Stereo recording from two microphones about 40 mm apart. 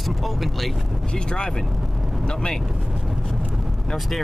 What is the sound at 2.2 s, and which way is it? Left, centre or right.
Speech, left.